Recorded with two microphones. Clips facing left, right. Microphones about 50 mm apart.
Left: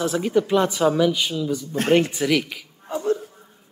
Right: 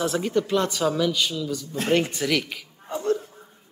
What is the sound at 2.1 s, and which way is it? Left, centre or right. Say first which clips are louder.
Speech: left 3 dB; centre.